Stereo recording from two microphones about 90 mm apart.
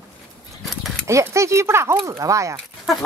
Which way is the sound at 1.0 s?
30° right (ahead or behind).